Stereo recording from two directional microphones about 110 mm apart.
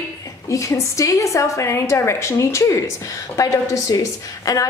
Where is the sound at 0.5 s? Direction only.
30° left (ahead or behind).